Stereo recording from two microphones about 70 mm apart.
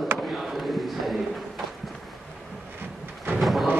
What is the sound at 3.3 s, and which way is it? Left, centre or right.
Thunder, centre.